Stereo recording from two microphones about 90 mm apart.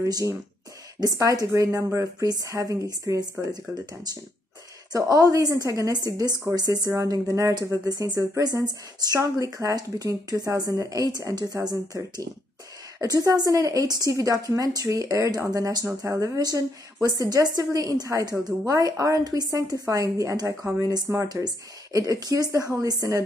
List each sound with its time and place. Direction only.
0.0 s speech: 35° right (ahead or behind)
4.9 s speech: 40° right (ahead or behind)
13.0 s speech: 40° right (ahead or behind)